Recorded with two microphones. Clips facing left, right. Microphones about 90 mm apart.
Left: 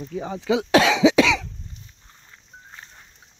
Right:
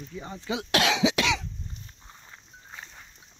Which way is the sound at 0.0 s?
80° left.